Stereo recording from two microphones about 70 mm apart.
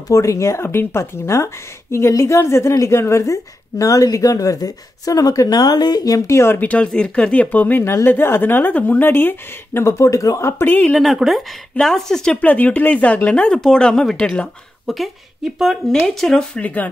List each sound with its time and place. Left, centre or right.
0.1 s a woman's voice: left
5.6 s speech: left
6.1 s a woman's voice: left
6.7 s speech: centre
7.4 s speech: left
7.8 s a woman's voice: left
11.0 s speech: centre
12.4 s speech: left
14.9 s speech: centre
16.5 s speech: left